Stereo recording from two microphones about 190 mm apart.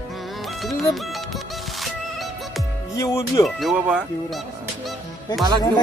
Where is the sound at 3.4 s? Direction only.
Centre (ahead or behind).